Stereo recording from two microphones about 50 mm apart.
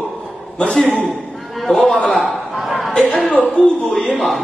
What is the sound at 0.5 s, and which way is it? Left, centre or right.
Speech, centre.